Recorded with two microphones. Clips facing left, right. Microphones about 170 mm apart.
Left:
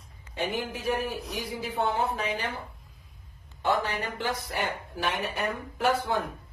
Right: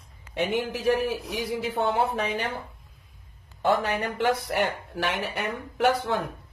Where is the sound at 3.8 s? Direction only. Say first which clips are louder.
Right 6 dB; 65° right (ahead or behind).